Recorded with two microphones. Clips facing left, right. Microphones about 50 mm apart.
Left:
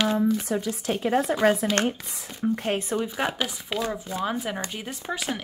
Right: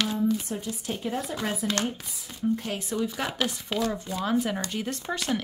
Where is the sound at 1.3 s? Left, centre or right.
Left.